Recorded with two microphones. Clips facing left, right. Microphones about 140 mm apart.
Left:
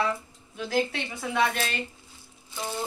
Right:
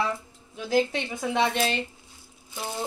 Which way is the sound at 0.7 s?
15° right (ahead or behind).